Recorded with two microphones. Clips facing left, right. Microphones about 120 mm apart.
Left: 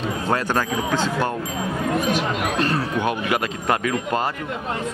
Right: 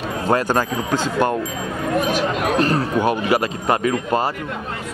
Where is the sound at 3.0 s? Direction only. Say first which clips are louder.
Right 6 dB; 35° right (ahead or behind).